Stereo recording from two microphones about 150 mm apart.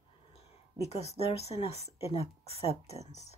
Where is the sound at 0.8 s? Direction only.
45° left (ahead or behind).